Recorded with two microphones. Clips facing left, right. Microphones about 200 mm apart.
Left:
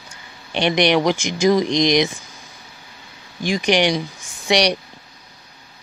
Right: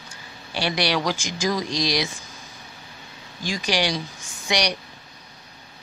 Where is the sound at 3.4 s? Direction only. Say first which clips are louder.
Left 7 dB; 20° left (ahead or behind).